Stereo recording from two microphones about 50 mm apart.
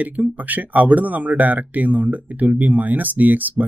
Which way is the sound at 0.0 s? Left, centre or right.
Right.